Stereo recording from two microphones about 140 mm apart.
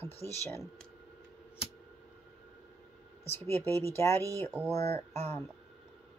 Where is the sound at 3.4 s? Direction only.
15° left (ahead or behind).